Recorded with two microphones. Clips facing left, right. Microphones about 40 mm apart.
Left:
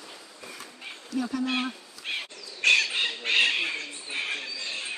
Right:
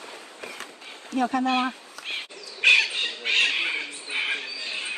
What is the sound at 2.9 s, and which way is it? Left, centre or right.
Squawk, centre.